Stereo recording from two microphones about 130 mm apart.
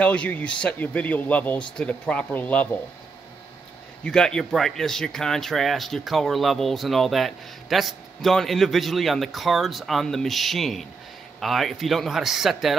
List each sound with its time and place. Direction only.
0.0 s speech: 10° left (ahead or behind)
4.0 s speech: 5° left (ahead or behind)